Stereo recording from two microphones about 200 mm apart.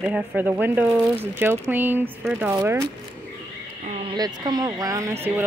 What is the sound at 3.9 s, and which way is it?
Speech, 20° right (ahead or behind).